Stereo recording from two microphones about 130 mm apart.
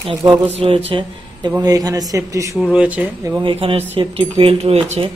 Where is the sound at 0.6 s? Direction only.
45° right (ahead or behind).